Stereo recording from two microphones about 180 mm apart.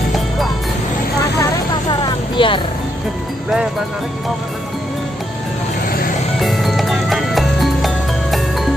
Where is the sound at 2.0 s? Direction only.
25° left (ahead or behind).